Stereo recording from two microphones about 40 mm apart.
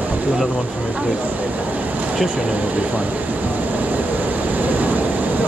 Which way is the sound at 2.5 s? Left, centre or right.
Right.